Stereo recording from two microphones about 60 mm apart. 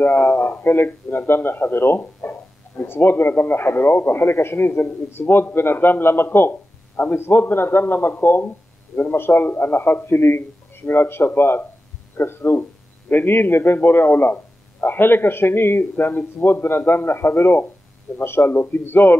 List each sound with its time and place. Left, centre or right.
0.0 s a man's voice: left